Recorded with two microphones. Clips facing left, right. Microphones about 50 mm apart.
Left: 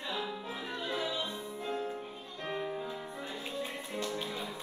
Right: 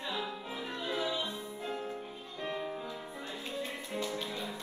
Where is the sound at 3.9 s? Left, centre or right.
Centre.